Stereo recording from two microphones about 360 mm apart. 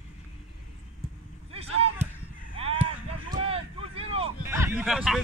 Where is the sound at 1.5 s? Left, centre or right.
Centre.